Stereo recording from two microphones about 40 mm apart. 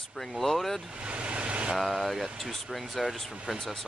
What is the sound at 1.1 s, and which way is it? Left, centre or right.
Vehicle, right.